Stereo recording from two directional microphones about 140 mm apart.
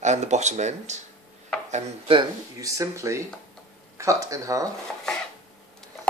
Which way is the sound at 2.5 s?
25° right (ahead or behind).